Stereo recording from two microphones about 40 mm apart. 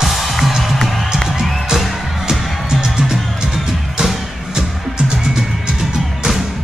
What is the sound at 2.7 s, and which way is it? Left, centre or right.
Music, centre.